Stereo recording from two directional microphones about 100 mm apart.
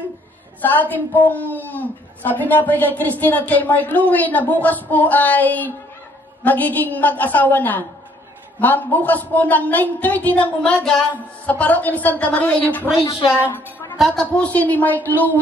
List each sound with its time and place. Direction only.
0.6 s a woman's voice: 15° left (ahead or behind)
12.9 s a woman's voice: 50° left (ahead or behind)
13.9 s a woman's voice: centre (ahead or behind)
14.2 s a woman's voice: 15° left (ahead or behind)